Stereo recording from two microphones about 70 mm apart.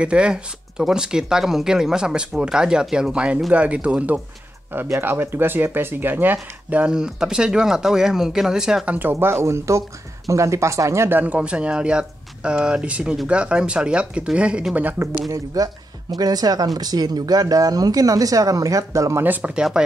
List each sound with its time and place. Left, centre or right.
0.0 s speech: centre
5.0 s speech: right; by 8.8 s centre
8.8 s speech: right
9.1 s speech: right
11.1 s speech: right
11.3 s speech: centre
15.2 s speech: right
16.2 s speech: right
19.2 s speech: right
19.5 s speech: centre